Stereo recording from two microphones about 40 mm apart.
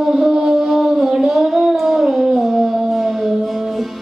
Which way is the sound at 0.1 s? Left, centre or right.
Centre.